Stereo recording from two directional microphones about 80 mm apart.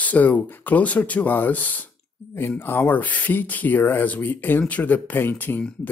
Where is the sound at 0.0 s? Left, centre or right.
Left.